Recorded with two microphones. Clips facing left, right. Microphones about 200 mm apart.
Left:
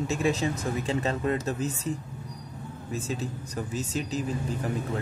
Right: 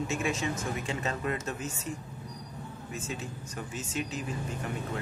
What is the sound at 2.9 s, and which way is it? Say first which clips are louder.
Speech: left 7 dB; 35° left (ahead or behind).